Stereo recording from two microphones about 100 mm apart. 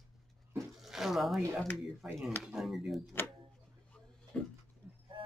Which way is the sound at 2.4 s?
5° right (ahead or behind).